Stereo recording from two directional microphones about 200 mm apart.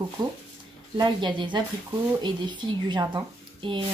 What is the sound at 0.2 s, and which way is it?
Speech, 20° right (ahead or behind).